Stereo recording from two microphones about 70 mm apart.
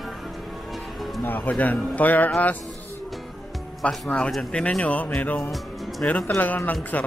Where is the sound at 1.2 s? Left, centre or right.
Left.